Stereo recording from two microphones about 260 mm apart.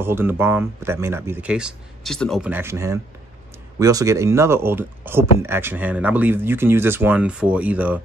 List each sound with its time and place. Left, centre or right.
0.0 s speech: centre